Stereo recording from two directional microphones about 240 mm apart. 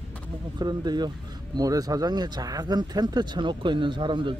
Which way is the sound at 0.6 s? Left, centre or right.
Centre.